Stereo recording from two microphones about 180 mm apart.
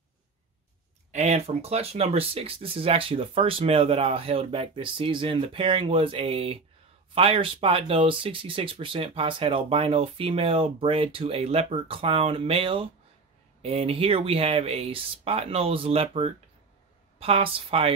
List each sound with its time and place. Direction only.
1.1 s speech: 40° right (ahead or behind)